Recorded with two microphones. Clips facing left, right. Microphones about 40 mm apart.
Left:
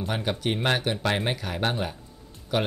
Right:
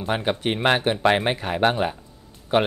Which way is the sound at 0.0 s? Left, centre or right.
Right.